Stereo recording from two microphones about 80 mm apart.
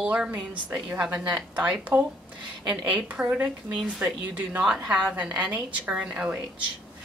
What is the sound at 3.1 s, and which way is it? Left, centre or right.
Speech, centre.